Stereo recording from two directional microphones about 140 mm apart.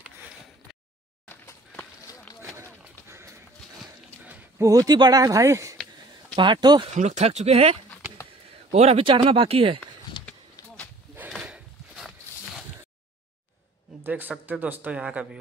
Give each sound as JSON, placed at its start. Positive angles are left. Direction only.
{"t": 1.2, "sound": "walk", "side_deg": 15}
{"t": 3.1, "sound": "horse", "side_deg": -20}
{"t": 4.3, "sound": "speech", "side_deg": -20}
{"t": 6.3, "sound": "speech", "side_deg": -35}
{"t": 6.9, "sound": "speech", "side_deg": -55}
{"t": 11.1, "sound": "a sound", "side_deg": -5}
{"t": 14.0, "sound": "a sound", "side_deg": -15}
{"t": 14.4, "sound": "speech", "side_deg": -10}